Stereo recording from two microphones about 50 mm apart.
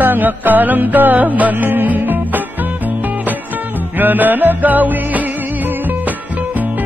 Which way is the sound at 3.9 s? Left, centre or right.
Right.